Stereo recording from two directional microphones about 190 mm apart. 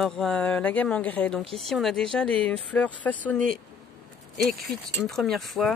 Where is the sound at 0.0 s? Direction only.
5° left (ahead or behind).